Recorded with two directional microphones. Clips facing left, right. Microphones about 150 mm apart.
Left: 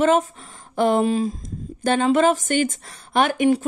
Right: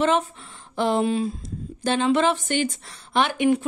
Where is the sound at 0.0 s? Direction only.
45° left (ahead or behind).